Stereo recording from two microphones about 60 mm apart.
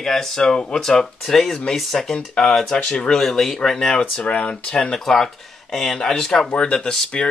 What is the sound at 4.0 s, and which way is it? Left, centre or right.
Speech, centre.